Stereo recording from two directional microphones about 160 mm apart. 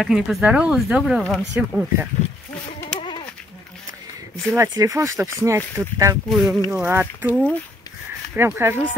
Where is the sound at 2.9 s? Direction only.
30° left (ahead or behind).